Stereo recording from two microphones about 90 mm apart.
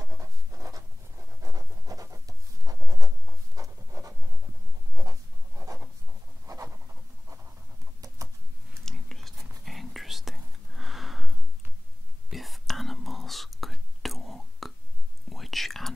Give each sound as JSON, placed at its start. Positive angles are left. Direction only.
{"t": 0.0, "sound": "writing", "side_deg": -35}
{"t": 1.4, "sound": "scratch", "side_deg": -40}
{"t": 2.2, "sound": "writing", "side_deg": -40}
{"t": 5.6, "sound": "writing", "side_deg": -30}
{"t": 8.8, "sound": "whispering", "side_deg": 5}